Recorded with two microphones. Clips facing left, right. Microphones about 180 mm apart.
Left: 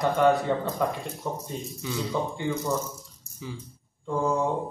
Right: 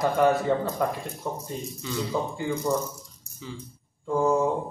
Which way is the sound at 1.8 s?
10° left (ahead or behind).